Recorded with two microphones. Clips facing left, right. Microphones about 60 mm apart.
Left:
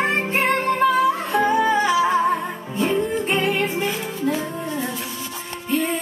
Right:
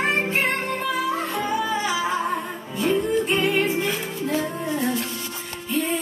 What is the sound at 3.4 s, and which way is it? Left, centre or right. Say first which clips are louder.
Music: even; left.